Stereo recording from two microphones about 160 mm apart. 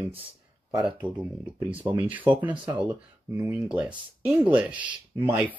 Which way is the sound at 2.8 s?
10° right (ahead or behind).